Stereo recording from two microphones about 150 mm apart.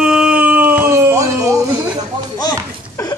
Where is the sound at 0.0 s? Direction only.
5° right (ahead or behind).